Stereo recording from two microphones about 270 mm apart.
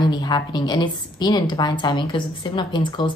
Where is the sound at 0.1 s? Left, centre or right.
Centre.